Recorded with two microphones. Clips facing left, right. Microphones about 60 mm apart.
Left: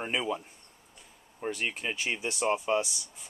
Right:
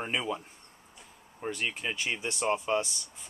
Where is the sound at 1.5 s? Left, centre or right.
Centre.